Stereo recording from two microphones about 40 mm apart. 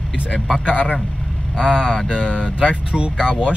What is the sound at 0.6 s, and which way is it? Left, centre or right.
Speech, right.